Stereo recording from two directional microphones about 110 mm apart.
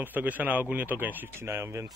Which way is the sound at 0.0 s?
15° right (ahead or behind).